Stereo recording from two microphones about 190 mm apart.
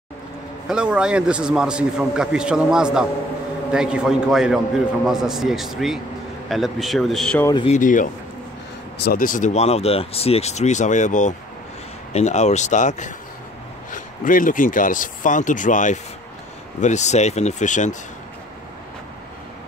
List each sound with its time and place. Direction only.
0.7 s a man's voice: 5° right (ahead or behind)
7.6 s speech: 40° left (ahead or behind)
8.9 s speech: 55° left (ahead or behind); by 17.9 s 40° left (ahead or behind)